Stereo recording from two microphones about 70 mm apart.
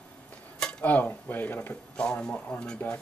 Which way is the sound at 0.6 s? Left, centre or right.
Centre.